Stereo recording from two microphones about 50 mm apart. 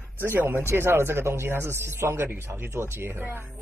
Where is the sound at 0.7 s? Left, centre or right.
Right.